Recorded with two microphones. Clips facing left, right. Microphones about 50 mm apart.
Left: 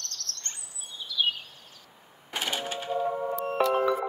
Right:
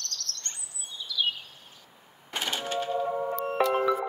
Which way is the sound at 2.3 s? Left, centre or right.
Centre.